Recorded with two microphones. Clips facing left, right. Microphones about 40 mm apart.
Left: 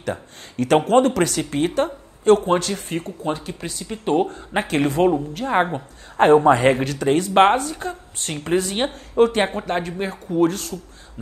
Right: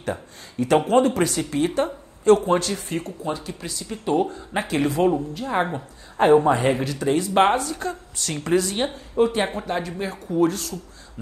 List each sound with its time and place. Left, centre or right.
0.0 s speech: left
2.7 s a woman's voice: left
4.3 s speech: left
5.8 s a woman's voice: left